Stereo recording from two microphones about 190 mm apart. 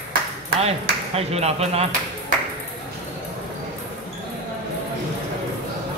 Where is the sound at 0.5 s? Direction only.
30° right (ahead or behind).